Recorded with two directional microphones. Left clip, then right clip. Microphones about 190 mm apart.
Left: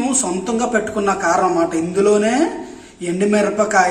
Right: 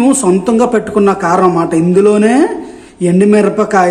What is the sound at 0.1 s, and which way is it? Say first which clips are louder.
Speech: right 9 dB; 50° right (ahead or behind).